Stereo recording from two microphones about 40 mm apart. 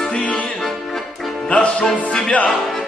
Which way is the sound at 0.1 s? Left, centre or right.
Left.